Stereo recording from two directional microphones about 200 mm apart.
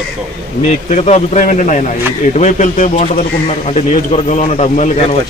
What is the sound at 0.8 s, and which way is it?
A man's voice, 35° left (ahead or behind).